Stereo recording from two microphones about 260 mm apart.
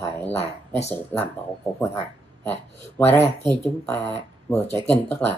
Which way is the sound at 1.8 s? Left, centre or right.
Centre.